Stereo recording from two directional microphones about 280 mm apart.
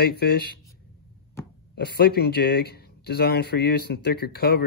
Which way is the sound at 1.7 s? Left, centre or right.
Left.